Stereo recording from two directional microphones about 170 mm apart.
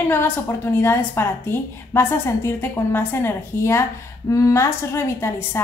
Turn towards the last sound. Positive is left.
turn(degrees=15)  # may be behind; listen again after turning